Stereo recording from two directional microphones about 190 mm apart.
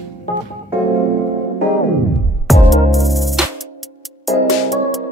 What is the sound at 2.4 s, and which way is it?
Music, centre (ahead or behind).